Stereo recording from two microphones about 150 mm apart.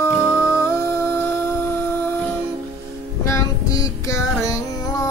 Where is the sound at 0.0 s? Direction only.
15° left (ahead or behind).